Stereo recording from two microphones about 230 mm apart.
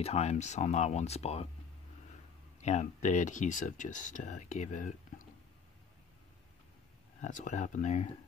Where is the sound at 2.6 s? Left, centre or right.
Left.